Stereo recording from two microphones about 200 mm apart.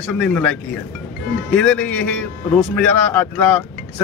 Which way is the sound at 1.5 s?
5° left (ahead or behind).